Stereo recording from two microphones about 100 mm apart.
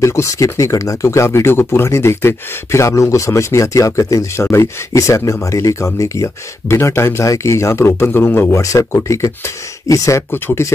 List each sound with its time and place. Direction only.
0.0 s speech: 30° left (ahead or behind)